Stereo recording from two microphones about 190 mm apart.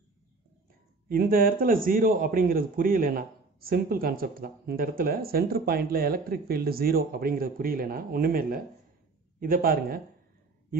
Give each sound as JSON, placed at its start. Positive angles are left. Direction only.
{"t": 1.0, "sound": "a man's voice", "side_deg": -50}